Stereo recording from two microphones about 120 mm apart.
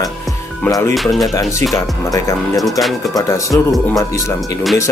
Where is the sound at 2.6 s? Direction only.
Centre (ahead or behind).